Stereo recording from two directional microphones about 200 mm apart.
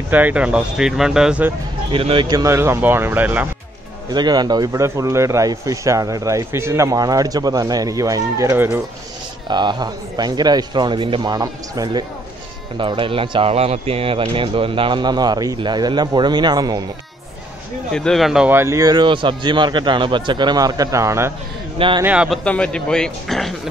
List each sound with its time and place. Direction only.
0.1 s speech: 10° right (ahead or behind)
1.9 s a man's voice: 25° right (ahead or behind); by 3.4 s 10° right (ahead or behind)
4.1 s a man's voice: 20° right (ahead or behind)
9.5 s speech: 20° right (ahead or behind)
17.9 s speech: centre (ahead or behind); by 21.3 s 15° right (ahead or behind)
21.7 s speech: 25° right (ahead or behind)
22.0 s speech: 5° right (ahead or behind)
22.4 s speech: 5° left (ahead or behind)